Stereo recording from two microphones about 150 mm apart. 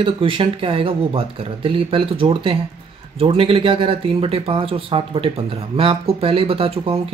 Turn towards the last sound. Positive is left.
turn(degrees=-40)  # may be behind; listen again after turning